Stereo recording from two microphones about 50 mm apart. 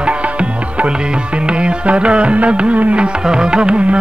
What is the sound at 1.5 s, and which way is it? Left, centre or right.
Music, right.